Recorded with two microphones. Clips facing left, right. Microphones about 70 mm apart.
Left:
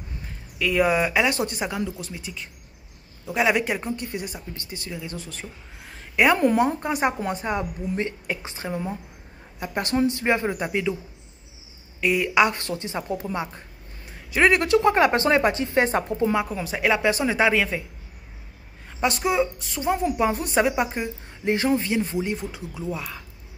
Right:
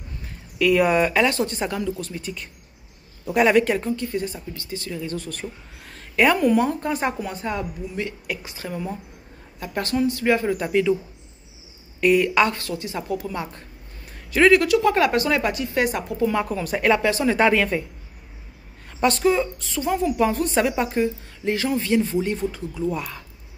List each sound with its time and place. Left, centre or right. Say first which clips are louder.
0.6 s speech: right 3 dB; centre
1.3 s speech: right 2 dB; centre
3.9 s speech: right 4 dB; left
6.3 s speech: right 1 dB; left; by 11.0 s centre
12.0 s speech: right 5 dB; centre
12.4 s speech: even; left
16.3 s speech: right 2 dB; centre
17.0 s speech: right 1 dB; centre
17.4 s speech: right 2 dB; centre
18.9 s speech: right 3 dB; centre
19.7 s speech: right 1 dB; left
21.5 s speech: right 2 dB; left
22.8 s speech: right 4 dB; centre